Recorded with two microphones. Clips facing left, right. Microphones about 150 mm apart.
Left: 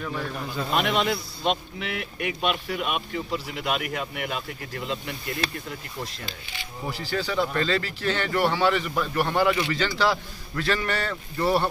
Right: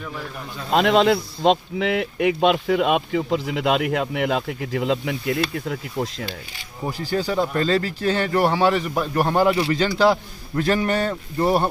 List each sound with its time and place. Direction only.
0.7 s speech: 90° right
6.9 s a man's voice: 45° right (ahead or behind)